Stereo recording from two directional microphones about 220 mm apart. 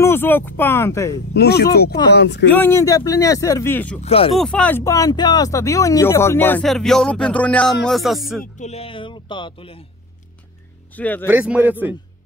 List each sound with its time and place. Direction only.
0.0 s speech: 10° left (ahead or behind)
1.3 s speech: 45° left (ahead or behind)
2.5 s speech: 10° left (ahead or behind)
4.0 s speech: 25° left (ahead or behind)
4.4 s speech: 5° left (ahead or behind)
7.8 s music: centre (ahead or behind)
8.5 s speech: 30° left (ahead or behind)
10.9 s speech: 5° left (ahead or behind)
11.2 s a man's voice: 10° right (ahead or behind)